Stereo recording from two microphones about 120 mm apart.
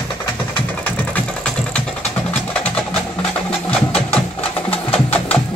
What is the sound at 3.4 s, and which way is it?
Music, 10° left (ahead or behind).